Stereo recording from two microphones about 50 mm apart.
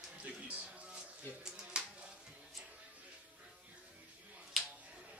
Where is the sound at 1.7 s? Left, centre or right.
Centre.